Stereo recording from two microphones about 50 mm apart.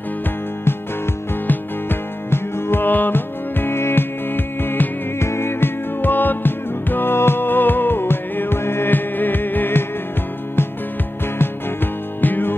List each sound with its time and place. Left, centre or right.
1.5 s music: left
5.2 s music: left
11.3 s music: left